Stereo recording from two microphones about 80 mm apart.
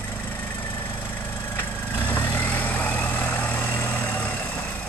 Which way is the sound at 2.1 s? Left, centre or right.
Left.